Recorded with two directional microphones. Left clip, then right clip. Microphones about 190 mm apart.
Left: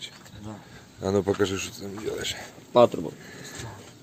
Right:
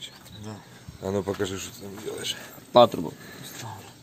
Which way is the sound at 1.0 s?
30° left (ahead or behind).